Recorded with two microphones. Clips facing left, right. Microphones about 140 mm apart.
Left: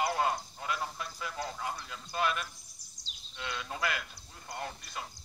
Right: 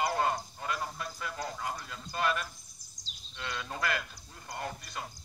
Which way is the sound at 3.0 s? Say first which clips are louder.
Right 1 dB; 90° right.